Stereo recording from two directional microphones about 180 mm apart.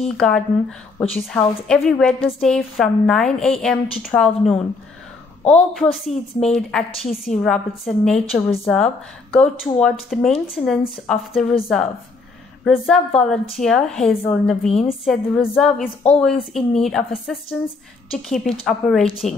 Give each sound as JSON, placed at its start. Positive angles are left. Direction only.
{"t": 0.0, "sound": "a woman's voice", "side_deg": 5}
{"t": 5.7, "sound": "a woman's voice", "side_deg": 0}
{"t": 6.9, "sound": "a woman's voice", "side_deg": 35}
{"t": 7.2, "sound": "a woman's voice", "side_deg": 0}
{"t": 12.6, "sound": "a woman's voice", "side_deg": 0}